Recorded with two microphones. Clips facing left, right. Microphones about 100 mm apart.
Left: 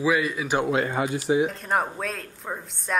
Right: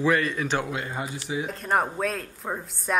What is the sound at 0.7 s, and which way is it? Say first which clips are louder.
Speech: left 7 dB; 90° left.